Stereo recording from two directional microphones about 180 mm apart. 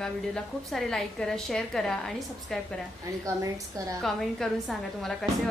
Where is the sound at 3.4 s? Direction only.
20° right (ahead or behind).